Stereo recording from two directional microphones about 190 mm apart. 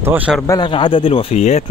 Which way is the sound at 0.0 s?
10° right (ahead or behind).